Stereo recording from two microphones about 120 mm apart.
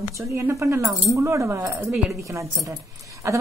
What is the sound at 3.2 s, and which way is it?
Speech, 25° right (ahead or behind).